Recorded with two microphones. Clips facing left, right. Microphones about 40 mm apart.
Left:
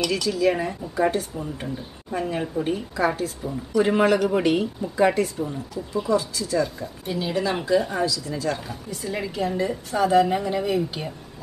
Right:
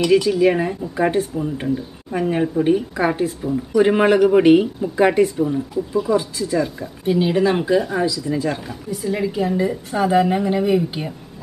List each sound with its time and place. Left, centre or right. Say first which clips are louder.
0.0 s speech: right 7 dB; right
8.6 s speech: right 7 dB; centre